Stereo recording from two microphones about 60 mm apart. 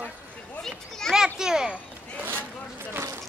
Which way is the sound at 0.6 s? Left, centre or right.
Centre.